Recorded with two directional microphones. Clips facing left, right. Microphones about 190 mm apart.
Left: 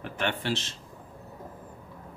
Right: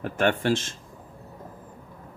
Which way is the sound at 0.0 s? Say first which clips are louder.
Right 7 dB; 45° right (ahead or behind).